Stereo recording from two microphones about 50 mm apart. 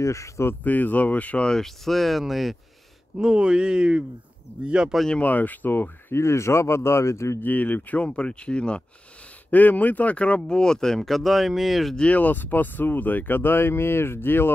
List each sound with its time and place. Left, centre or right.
0.0 s speech: left
0.7 s speech: left
1.4 s speech: centre
3.2 s speech: centre
5.2 s speech: left
6.1 s speech: left
7.4 s speech: left
9.5 s speech: left
10.4 s speech: centre
12.1 s speech: left